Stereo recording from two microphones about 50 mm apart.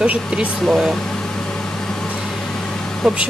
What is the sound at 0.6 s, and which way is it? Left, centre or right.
Speech, centre.